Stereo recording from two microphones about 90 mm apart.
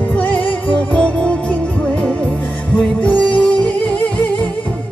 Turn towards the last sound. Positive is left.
turn(degrees=15)  # may be behind; listen again after turning